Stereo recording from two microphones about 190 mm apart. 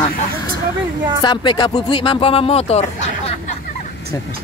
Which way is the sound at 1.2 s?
25° left (ahead or behind).